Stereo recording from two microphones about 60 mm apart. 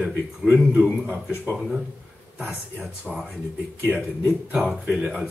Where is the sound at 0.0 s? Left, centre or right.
Centre.